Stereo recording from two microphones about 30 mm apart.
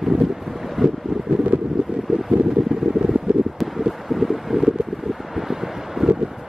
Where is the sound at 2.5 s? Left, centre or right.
Centre.